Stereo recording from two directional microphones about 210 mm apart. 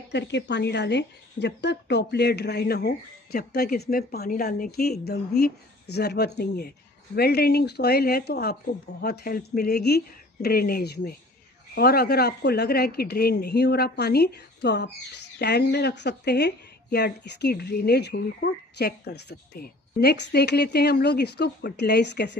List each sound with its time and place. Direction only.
0.1 s a woman's voice: 55° left (ahead or behind)